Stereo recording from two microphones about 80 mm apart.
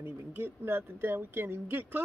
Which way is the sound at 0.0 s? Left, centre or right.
Right.